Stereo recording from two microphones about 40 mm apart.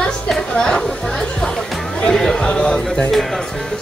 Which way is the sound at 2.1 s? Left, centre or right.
Centre.